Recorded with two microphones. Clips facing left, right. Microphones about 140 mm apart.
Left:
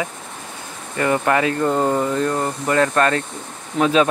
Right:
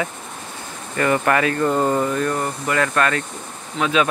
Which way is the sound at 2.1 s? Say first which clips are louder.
Left 1 dB; 25° left (ahead or behind).